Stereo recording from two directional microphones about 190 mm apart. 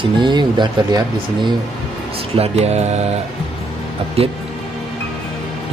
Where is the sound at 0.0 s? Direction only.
25° right (ahead or behind).